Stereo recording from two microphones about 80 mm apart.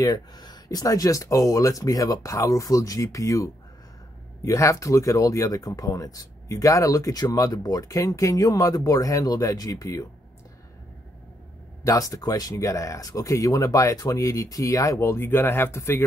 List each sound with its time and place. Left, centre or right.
0.0 s speech: left
11.8 s speech: left